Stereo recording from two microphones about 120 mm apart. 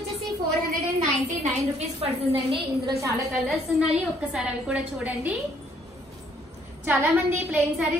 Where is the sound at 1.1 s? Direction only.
70° right (ahead or behind).